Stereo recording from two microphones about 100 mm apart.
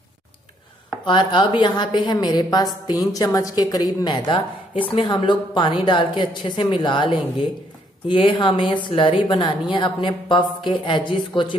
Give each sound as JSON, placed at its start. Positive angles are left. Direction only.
{"t": 1.0, "sound": "a woman's voice", "side_deg": 50}